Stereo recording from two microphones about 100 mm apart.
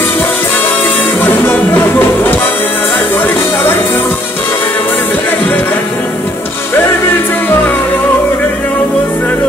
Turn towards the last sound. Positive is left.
turn(degrees=20)  # may be behind; listen again after turning